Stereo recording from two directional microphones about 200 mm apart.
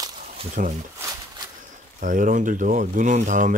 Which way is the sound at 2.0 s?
40° right (ahead or behind).